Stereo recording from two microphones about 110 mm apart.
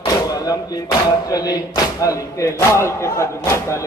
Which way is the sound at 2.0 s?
30° left (ahead or behind).